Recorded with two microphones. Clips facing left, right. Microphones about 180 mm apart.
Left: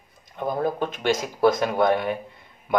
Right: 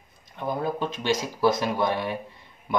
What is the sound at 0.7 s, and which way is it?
Speech, 55° left (ahead or behind).